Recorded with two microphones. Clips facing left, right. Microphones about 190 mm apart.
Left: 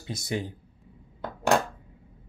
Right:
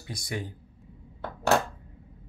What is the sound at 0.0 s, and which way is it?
Speech, 25° left (ahead or behind).